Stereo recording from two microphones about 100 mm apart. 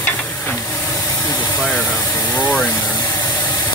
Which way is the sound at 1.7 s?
10° left (ahead or behind).